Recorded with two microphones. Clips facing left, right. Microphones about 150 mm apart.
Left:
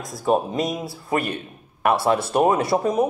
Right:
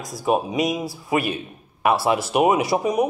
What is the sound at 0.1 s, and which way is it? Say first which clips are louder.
A man's voice: left 1 dB; 5° right (ahead or behind).